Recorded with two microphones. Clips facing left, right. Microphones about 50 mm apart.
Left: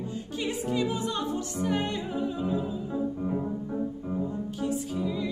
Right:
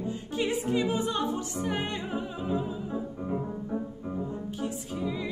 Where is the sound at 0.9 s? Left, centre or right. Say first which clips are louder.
Right 1 dB; right.